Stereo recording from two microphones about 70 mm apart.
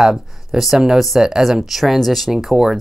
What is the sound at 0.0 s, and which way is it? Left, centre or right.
Speech, centre.